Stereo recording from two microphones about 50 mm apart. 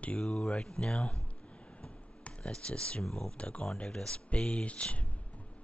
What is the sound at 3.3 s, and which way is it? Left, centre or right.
Speech, left.